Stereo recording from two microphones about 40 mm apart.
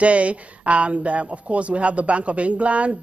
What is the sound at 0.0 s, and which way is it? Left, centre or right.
Speech, right.